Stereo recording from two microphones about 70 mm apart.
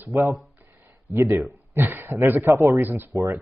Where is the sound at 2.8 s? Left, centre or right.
Right.